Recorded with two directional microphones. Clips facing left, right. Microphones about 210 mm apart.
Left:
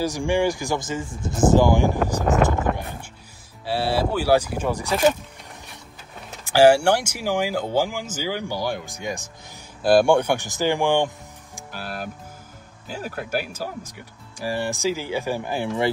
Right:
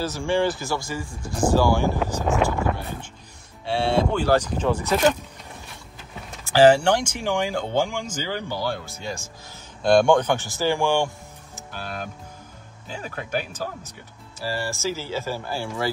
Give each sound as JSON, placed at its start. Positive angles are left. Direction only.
{"t": 0.0, "sound": "speech", "side_deg": 15}
{"t": 2.2, "sound": "speech", "side_deg": 0}
{"t": 2.6, "sound": "horse", "side_deg": 15}
{"t": 3.6, "sound": "speech", "side_deg": 5}
{"t": 6.4, "sound": "speech", "side_deg": 10}
{"t": 9.8, "sound": "speech", "side_deg": 5}
{"t": 11.7, "sound": "speech", "side_deg": 5}